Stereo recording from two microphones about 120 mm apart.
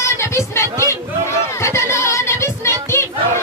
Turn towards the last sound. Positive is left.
turn(degrees=20)  # may be behind; listen again after turning